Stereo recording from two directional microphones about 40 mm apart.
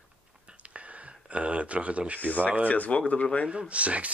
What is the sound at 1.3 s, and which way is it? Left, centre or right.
Speech, right.